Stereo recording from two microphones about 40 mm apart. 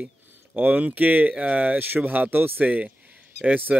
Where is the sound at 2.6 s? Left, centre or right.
Right.